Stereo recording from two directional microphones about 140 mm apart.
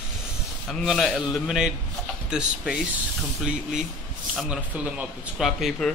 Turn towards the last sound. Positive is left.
turn(degrees=0)  # may be behind; listen again after turning